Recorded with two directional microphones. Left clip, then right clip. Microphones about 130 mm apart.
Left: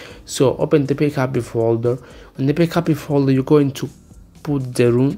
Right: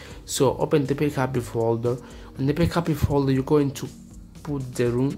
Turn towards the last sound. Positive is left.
turn(degrees=35)  # may be behind; listen again after turning